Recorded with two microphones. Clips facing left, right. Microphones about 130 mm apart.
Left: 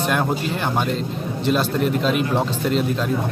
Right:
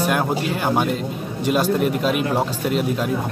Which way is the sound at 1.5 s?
10° right (ahead or behind).